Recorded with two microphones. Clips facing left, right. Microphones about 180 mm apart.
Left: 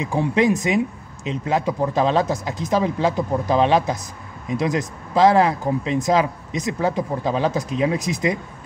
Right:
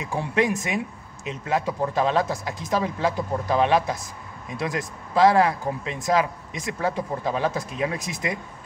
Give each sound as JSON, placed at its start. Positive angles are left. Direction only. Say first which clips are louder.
{"t": 0.0, "sound": "speech", "louder": "left 5 dB", "side_deg": 20}